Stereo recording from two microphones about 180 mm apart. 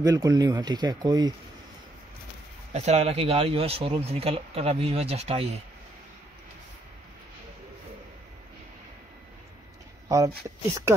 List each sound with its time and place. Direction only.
0.0 s speech: 20° right (ahead or behind)
2.7 s speech: 40° right (ahead or behind)
10.0 s speech: 15° right (ahead or behind)